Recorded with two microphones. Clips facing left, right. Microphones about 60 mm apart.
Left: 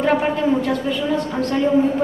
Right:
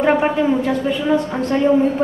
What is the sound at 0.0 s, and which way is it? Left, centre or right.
A woman's voice, right.